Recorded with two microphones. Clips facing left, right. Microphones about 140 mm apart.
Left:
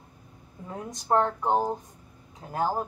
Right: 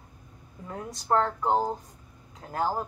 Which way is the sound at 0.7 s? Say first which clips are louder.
Left 1 dB; 20° left (ahead or behind).